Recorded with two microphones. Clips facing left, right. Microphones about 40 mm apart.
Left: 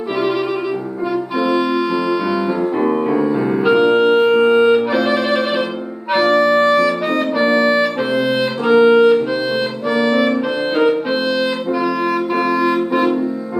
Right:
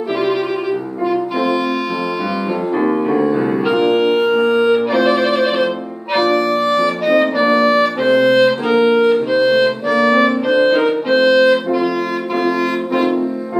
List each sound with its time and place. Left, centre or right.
2.8 s music: centre
4.4 s music: centre
4.7 s music: centre
6.1 s music: centre
6.8 s harmonica: centre
7.6 s music: centre
12.0 s clarinet: centre